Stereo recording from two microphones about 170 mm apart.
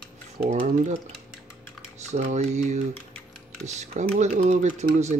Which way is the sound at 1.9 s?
40° right (ahead or behind).